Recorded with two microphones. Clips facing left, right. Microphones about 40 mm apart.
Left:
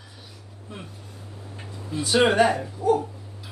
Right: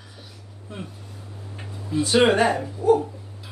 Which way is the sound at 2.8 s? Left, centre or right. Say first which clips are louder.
Right 3 dB; right.